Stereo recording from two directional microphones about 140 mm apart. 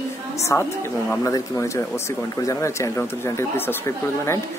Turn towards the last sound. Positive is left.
turn(degrees=20)  # may be behind; listen again after turning